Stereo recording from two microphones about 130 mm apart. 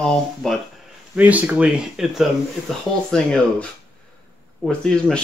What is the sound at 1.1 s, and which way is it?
Speech, 10° right (ahead or behind).